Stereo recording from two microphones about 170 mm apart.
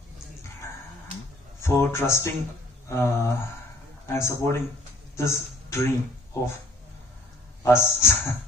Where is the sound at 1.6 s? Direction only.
15° left (ahead or behind).